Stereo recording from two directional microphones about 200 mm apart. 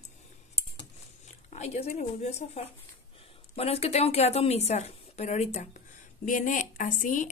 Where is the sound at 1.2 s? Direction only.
35° left (ahead or behind).